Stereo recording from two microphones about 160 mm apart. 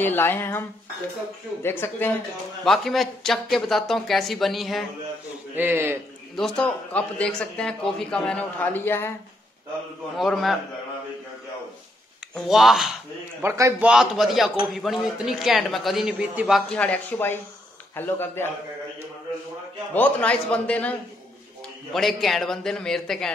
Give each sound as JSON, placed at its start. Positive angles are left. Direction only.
{"t": 0.0, "sound": "speech", "side_deg": 15}
{"t": 2.6, "sound": "a man's voice", "side_deg": 0}
{"t": 5.6, "sound": "a man's voice", "side_deg": -15}
{"t": 6.3, "sound": "speech", "side_deg": 5}
{"t": 10.1, "sound": "a man's voice", "side_deg": 0}
{"t": 12.4, "sound": "a man's voice", "side_deg": 0}
{"t": 13.4, "sound": "a man's voice", "side_deg": -15}
{"t": 13.8, "sound": "a man's voice", "side_deg": -5}
{"t": 16.7, "sound": "speech", "side_deg": 10}
{"t": 19.9, "sound": "a man's voice", "side_deg": 10}